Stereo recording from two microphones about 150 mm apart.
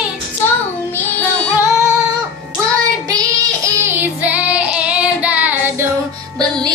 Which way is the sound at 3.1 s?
20° right (ahead or behind).